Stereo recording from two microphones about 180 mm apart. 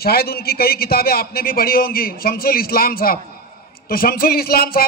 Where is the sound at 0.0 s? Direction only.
60° left (ahead or behind).